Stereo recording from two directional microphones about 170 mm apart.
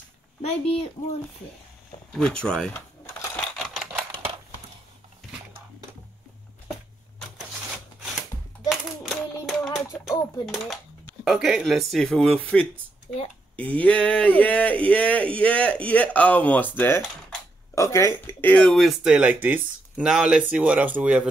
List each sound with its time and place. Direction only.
0.4 s speech: 35° left (ahead or behind)
2.1 s speech: 5° left (ahead or behind)
3.3 s typewriter: centre (ahead or behind)
8.6 s a sound: centre (ahead or behind)
10.0 s a sound: 15° left (ahead or behind)
10.4 s speech: centre (ahead or behind)